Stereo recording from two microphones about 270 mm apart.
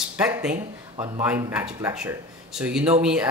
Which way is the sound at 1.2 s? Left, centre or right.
Centre.